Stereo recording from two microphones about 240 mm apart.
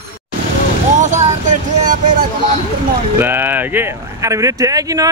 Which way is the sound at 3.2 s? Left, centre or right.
Centre.